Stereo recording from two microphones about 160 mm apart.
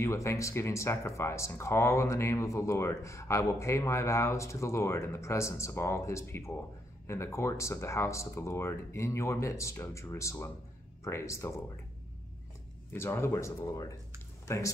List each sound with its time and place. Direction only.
0.0 s speech: 15° left (ahead or behind)
12.9 s speech: 15° left (ahead or behind)